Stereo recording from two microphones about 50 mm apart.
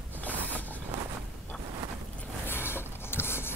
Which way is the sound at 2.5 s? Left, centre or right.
Left.